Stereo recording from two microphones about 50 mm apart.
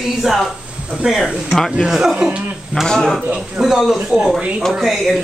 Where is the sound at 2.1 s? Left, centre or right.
Right.